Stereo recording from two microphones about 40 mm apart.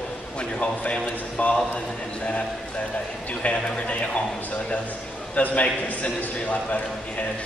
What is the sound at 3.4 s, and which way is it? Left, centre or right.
Speech, left.